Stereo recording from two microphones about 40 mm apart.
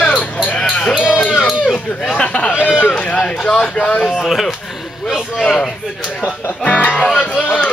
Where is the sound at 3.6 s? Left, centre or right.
Left.